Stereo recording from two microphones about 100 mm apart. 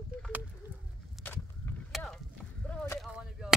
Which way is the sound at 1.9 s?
Centre (ahead or behind).